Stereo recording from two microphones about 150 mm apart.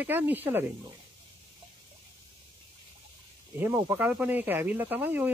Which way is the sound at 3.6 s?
10° right (ahead or behind).